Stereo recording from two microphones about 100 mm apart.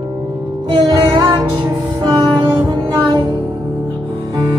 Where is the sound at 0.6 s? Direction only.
55° right (ahead or behind).